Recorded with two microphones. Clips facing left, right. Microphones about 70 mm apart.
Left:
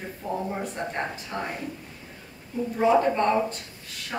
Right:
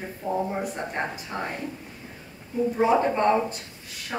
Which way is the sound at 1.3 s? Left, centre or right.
Centre.